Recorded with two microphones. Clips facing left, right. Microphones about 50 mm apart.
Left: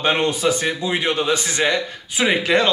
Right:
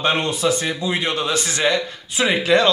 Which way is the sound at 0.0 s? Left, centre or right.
Left.